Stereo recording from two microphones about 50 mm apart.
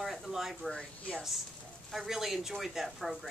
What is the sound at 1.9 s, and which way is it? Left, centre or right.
Speech, centre.